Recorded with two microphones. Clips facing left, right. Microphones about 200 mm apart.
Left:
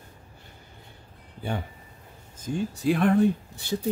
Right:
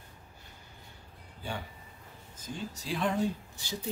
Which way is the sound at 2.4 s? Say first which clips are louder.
Left 14 dB; 55° left (ahead or behind).